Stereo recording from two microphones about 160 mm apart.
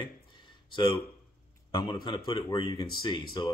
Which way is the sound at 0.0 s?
30° left (ahead or behind).